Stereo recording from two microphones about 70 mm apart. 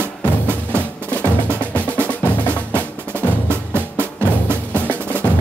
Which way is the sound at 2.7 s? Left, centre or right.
Right.